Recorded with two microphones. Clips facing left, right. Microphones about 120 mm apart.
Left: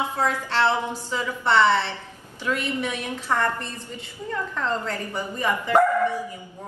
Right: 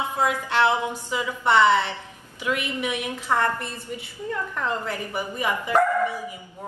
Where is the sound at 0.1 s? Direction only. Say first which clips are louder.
Right 1 dB; 15° right (ahead or behind).